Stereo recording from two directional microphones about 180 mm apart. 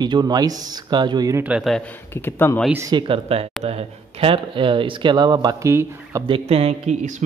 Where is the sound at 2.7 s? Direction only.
15° right (ahead or behind).